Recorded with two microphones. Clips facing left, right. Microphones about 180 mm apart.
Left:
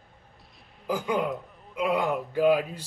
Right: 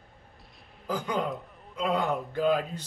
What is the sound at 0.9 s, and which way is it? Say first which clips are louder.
A man's voice: left 3 dB; 10° left (ahead or behind).